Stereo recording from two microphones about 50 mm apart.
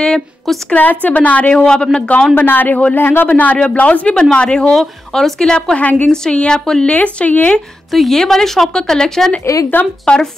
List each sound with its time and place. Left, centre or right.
0.7 s a woman's voice: left
1.5 s speech: centre
2.3 s a woman's voice: left
4.1 s speech: centre
5.8 s a woman's voice: left
6.0 s speech: centre
6.9 s a woman's voice: left
7.9 s speech: centre
9.7 s a woman's voice: left
10.0 s speech: centre